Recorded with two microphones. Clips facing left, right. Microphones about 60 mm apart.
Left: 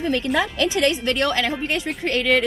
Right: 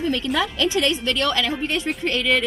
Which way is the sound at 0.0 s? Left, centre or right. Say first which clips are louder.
Left 1 dB; left.